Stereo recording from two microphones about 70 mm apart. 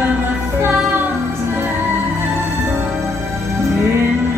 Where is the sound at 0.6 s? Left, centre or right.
Right.